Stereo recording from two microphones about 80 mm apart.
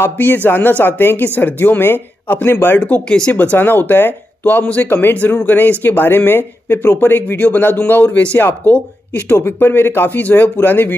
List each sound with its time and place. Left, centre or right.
0.0 s speech: left
3.5 s speech: left